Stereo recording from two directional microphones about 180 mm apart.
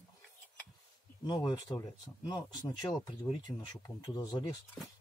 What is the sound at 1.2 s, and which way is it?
Speech, 25° left (ahead or behind).